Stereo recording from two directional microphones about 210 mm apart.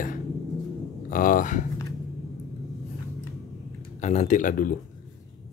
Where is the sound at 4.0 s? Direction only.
35° left (ahead or behind).